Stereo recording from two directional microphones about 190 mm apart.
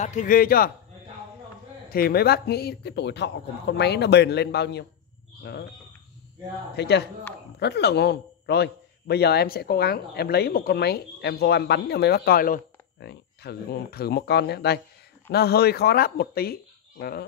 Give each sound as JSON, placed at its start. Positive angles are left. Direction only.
{"t": 0.0, "sound": "a man's voice", "side_deg": 45}
{"t": 1.9, "sound": "a man's voice", "side_deg": 50}
{"t": 6.8, "sound": "a man's voice", "side_deg": 60}